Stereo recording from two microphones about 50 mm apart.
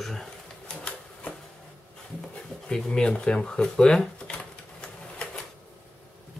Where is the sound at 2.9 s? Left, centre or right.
Centre.